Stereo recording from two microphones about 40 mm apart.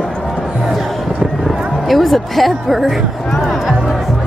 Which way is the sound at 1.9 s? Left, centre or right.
Centre.